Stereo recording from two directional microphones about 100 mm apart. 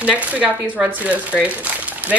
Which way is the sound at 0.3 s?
15° right (ahead or behind).